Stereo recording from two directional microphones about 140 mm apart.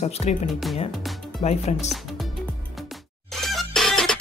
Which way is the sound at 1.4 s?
55° left (ahead or behind).